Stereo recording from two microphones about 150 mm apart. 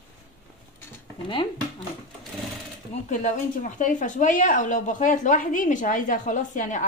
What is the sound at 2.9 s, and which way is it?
A woman's voice, 55° left (ahead or behind).